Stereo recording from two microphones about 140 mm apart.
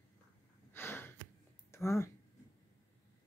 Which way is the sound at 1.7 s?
20° left (ahead or behind).